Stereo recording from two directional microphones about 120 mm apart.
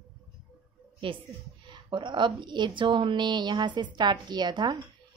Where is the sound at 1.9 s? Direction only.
40° right (ahead or behind).